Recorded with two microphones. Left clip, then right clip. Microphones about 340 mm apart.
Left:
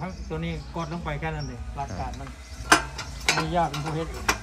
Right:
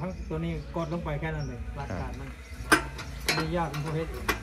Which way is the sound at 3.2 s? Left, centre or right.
Centre.